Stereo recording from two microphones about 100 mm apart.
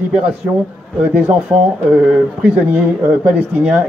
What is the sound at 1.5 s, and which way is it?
Speech, 10° right (ahead or behind).